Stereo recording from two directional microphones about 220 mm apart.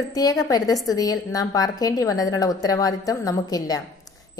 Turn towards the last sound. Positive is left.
turn(degrees=15)  # may be behind; listen again after turning